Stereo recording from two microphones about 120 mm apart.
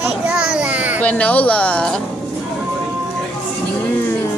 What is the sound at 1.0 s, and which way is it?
Speech, 10° left (ahead or behind).